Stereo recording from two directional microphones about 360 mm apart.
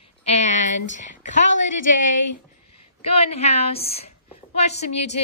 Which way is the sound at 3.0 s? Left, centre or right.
Centre.